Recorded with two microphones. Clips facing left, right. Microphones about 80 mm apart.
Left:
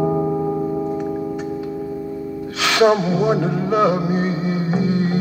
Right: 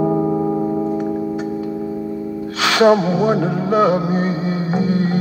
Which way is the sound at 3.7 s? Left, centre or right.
Right.